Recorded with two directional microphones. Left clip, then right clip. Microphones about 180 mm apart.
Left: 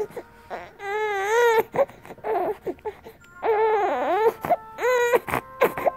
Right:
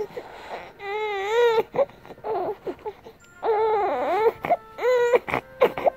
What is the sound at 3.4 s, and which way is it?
Hoot, 30° left (ahead or behind).